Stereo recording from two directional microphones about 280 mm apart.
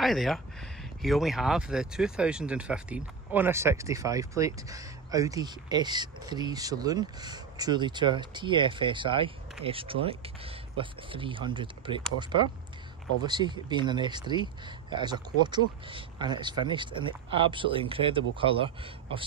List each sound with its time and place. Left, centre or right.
0.0 s speech: centre